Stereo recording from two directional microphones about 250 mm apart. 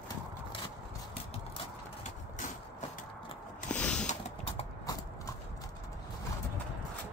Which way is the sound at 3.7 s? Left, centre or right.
Centre.